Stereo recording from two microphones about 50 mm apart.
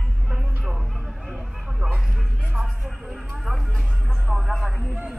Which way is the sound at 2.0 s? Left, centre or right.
Centre.